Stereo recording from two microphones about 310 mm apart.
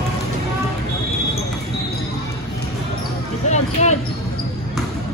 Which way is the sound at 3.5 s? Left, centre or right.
Left.